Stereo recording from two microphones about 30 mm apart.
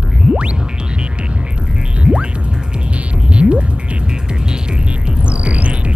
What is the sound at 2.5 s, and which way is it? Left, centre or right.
Music, right.